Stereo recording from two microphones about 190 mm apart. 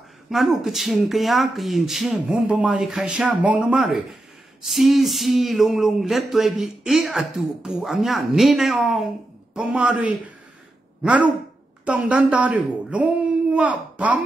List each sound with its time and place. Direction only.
0.3 s a woman's voice: centre (ahead or behind)